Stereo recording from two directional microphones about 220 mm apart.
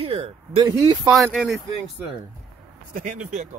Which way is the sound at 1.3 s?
Centre (ahead or behind).